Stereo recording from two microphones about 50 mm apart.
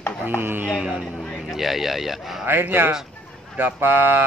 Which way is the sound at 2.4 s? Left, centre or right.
Right.